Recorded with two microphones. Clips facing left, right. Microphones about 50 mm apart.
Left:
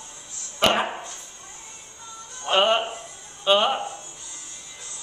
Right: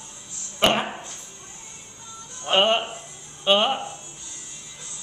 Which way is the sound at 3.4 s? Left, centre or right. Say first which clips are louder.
Even; centre.